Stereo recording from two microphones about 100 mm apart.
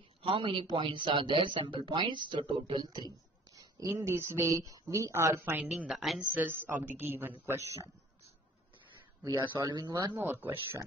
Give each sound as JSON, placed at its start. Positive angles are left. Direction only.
{"t": 0.2, "sound": "a man's voice", "side_deg": -60}
{"t": 3.8, "sound": "a woman's voice", "side_deg": -30}
{"t": 5.8, "sound": "a woman's voice", "side_deg": -5}
{"t": 6.3, "sound": "a woman's voice", "side_deg": -20}
{"t": 9.6, "sound": "speech", "side_deg": -40}
{"t": 10.1, "sound": "a woman's voice", "side_deg": -20}